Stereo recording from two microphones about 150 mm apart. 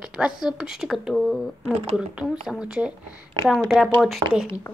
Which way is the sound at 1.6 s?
45° right (ahead or behind).